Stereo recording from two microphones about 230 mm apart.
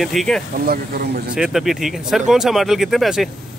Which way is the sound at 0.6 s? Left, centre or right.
Right.